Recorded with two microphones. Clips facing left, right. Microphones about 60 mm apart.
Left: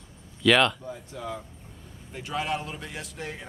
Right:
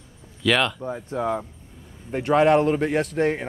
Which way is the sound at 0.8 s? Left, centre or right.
Right.